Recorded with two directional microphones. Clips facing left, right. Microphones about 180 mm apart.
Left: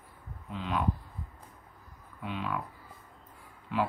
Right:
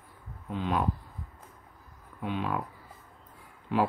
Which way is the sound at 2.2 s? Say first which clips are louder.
Right 4 dB; 40° right (ahead or behind).